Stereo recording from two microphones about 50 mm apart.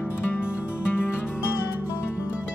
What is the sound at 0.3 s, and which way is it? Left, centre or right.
Music, left.